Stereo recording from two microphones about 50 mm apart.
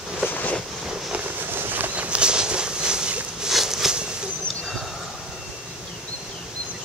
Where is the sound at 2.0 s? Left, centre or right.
Right.